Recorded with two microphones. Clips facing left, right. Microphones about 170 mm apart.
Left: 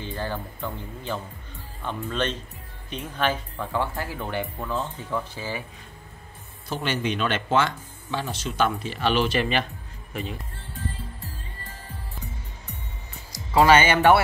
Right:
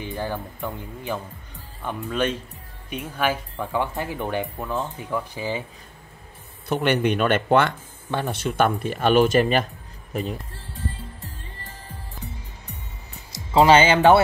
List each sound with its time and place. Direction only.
0.0 s speech: 15° right (ahead or behind)
6.7 s speech: 60° right (ahead or behind); by 10.3 s 40° right (ahead or behind)
13.5 s speech: 20° right (ahead or behind)